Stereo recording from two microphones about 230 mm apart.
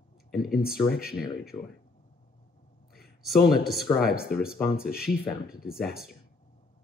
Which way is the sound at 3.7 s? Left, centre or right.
Centre.